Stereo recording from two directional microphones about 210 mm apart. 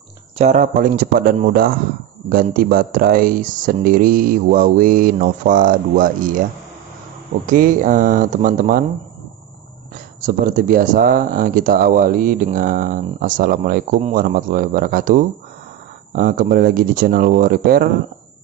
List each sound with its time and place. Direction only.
0.4 s speech: 35° right (ahead or behind)
7.4 s speech: 40° right (ahead or behind)
10.2 s speech: 40° right (ahead or behind)
16.2 s speech: 45° right (ahead or behind)